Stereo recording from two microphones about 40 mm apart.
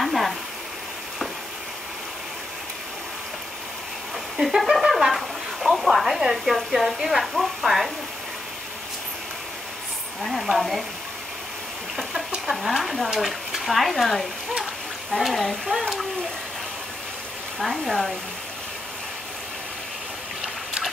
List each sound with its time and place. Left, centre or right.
0.0 s a sound: centre
4.4 s speech: centre
10.2 s speech: centre
12.4 s speech: centre
17.6 s speech: centre
20.4 s a sound: centre